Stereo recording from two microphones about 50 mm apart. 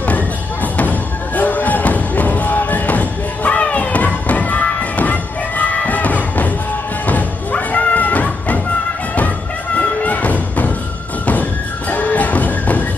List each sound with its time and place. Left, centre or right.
0.0 s music: left
9.8 s a sound: left
11.9 s music: left